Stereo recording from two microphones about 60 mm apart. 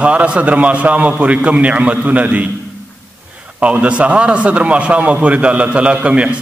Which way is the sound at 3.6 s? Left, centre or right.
Right.